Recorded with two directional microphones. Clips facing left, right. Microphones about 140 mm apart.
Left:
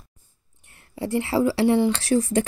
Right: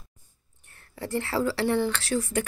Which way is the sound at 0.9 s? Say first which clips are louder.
Left 5 dB; 15° left (ahead or behind).